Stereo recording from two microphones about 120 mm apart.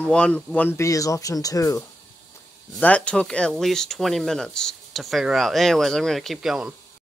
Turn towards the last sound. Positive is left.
turn(degrees=-5)  # may be behind; listen again after turning